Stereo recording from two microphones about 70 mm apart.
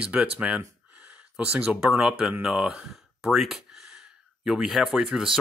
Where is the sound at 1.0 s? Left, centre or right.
Centre.